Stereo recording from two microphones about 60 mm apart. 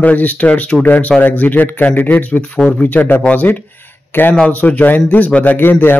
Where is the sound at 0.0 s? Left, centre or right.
Left.